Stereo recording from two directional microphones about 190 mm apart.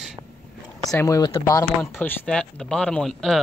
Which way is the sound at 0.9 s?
15° left (ahead or behind).